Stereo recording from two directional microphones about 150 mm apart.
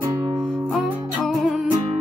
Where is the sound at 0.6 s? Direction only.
Centre (ahead or behind).